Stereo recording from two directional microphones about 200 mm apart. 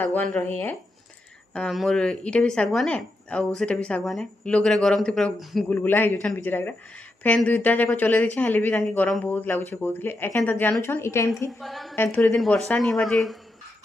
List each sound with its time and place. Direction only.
0.0 s speech: 10° left (ahead or behind)
11.6 s speech: centre (ahead or behind)